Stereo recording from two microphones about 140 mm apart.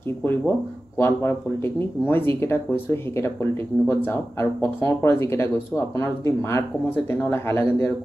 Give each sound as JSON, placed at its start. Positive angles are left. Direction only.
{"t": 0.2, "sound": "speech", "side_deg": 15}